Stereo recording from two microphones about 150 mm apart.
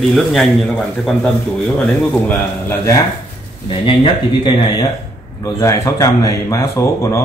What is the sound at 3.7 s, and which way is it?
Speech, 35° left (ahead or behind).